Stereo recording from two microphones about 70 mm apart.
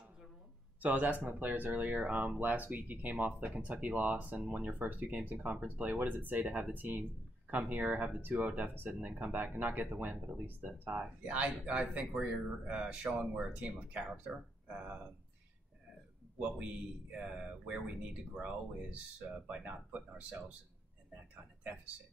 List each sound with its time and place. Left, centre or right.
0.7 s speech: right
16.3 s speech: centre